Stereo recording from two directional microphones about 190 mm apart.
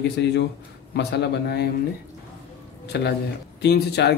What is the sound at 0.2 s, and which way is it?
A man's voice, 65° left (ahead or behind).